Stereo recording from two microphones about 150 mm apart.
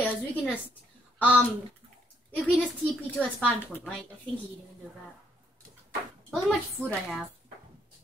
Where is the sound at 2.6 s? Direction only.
10° left (ahead or behind).